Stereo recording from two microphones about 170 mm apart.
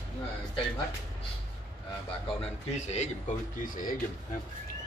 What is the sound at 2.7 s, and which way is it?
Speech, 40° left (ahead or behind).